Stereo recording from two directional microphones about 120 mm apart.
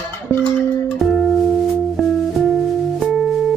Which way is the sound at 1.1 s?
Centre (ahead or behind).